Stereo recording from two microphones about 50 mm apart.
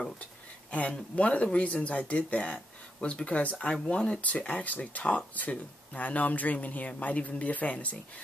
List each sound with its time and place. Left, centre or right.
0.7 s speech: left